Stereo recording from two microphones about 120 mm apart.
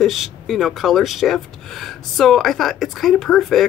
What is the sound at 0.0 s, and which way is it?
Speech, centre (ahead or behind).